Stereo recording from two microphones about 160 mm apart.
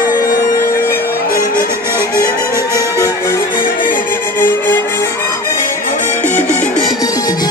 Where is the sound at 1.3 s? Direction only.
60° left (ahead or behind).